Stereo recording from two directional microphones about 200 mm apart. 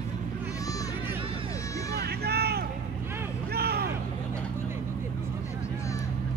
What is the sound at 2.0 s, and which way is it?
Vehicle, 50° right (ahead or behind).